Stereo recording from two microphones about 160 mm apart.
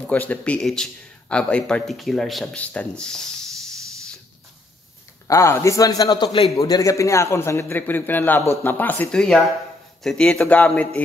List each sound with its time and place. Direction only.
0.1 s a man's voice: 10° left (ahead or behind)
5.3 s a man's voice: 20° left (ahead or behind)